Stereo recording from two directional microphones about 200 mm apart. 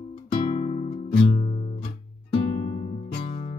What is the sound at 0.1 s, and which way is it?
Music, 35° left (ahead or behind).